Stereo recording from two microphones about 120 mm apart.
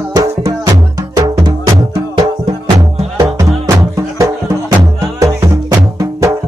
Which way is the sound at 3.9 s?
25° right (ahead or behind).